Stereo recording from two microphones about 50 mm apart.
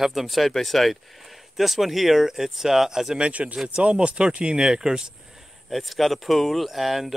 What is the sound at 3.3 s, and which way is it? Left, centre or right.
Speech, right.